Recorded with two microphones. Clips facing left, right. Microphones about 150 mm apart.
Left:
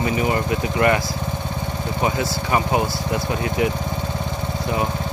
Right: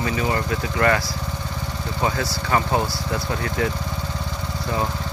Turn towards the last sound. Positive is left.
turn(degrees=15)  # may be behind; listen again after turning